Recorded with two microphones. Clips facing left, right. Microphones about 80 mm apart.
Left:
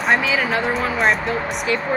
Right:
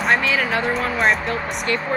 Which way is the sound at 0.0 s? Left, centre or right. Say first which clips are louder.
Left 1 dB; centre.